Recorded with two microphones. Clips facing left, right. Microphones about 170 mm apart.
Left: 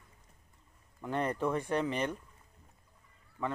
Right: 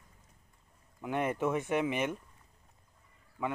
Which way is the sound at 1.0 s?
10° right (ahead or behind).